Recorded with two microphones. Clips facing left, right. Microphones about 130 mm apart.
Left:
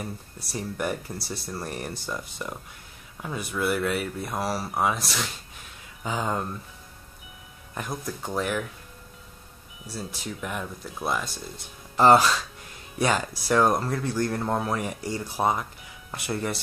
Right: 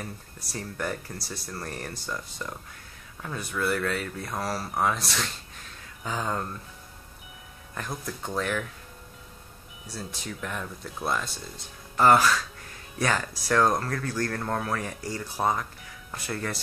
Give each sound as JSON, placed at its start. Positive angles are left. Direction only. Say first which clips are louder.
{"t": 0.0, "sound": "speech", "louder": "left 3 dB", "side_deg": 15}
{"t": 7.9, "sound": "speech", "louder": "left 2 dB", "side_deg": 5}
{"t": 9.9, "sound": "speech", "louder": "left 2 dB", "side_deg": 10}
{"t": 12.0, "sound": "speech", "louder": "left 2 dB", "side_deg": 25}